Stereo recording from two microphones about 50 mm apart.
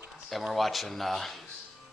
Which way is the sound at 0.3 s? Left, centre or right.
Centre.